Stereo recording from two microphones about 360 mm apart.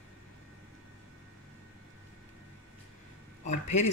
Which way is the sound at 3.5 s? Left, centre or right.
Centre.